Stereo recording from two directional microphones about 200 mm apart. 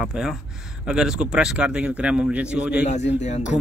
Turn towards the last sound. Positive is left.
turn(degrees=35)  # may be behind; listen again after turning